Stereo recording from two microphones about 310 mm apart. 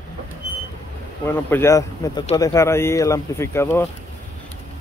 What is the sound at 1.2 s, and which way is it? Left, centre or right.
Speech, centre.